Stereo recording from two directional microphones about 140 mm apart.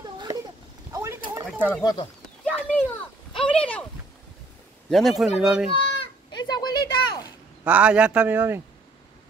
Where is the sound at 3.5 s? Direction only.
10° left (ahead or behind).